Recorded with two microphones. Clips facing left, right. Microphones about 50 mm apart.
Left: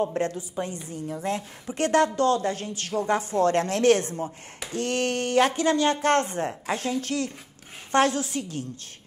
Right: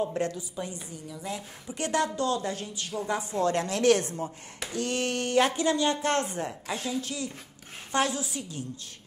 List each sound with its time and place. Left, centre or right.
0.2 s a woman's voice: left